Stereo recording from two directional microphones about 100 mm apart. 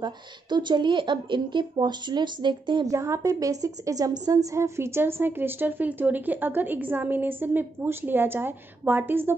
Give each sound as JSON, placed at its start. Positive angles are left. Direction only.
{"t": 0.0, "sound": "speech", "side_deg": -50}
{"t": 2.9, "sound": "a woman's voice", "side_deg": -30}